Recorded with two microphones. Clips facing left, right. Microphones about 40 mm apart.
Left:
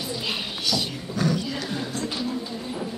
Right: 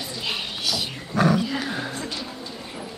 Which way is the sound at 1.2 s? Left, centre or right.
Centre.